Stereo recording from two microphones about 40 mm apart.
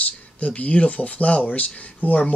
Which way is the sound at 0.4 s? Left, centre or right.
Left.